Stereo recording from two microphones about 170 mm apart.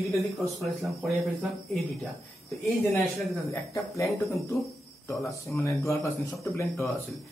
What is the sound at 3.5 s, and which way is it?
Speech, 20° left (ahead or behind).